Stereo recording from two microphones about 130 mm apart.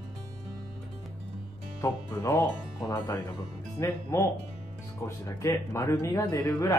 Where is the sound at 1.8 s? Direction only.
20° left (ahead or behind).